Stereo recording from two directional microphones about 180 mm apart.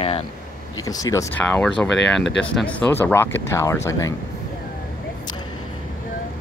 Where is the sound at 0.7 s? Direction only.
20° left (ahead or behind).